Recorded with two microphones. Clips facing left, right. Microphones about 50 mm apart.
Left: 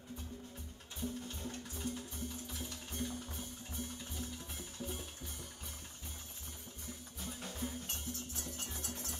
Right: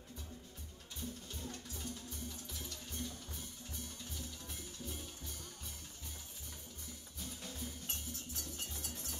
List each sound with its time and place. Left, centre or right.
1.3 s music: left
2.9 s music: left
7.2 s music: left
7.8 s music: centre